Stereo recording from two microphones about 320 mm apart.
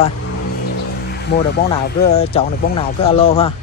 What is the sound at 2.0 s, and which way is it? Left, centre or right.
Speech, centre.